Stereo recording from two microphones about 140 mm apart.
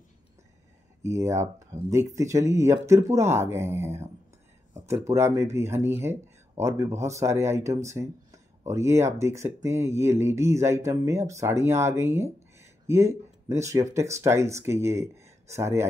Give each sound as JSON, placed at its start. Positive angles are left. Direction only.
{"t": 1.0, "sound": "speech", "side_deg": -20}